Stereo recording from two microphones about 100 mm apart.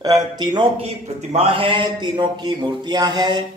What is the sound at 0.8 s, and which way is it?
Speech, 90° right.